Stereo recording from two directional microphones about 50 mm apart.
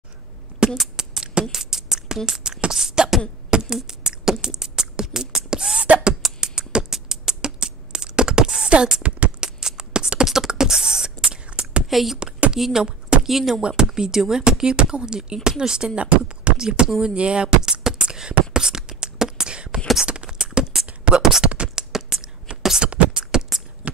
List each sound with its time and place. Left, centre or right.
0.7 s beatboxing: centre
2.1 s speech: centre
2.7 s beatboxing: centre
11.9 s speech: centre
13.6 s speech: centre
17.0 s beatboxing: centre
21.2 s beatboxing: centre
21.5 s beatboxing: right
21.9 s a sound: centre
22.6 s beatboxing: centre
22.8 s beatboxing: right